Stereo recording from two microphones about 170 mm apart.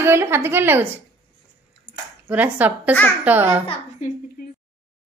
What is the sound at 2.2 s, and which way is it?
A woman's voice, 10° right (ahead or behind).